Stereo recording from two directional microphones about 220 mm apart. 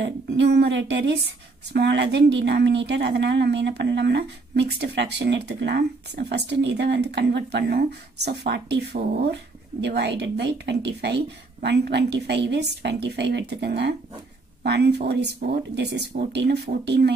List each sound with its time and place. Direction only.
0.0 s speech: 50° right (ahead or behind)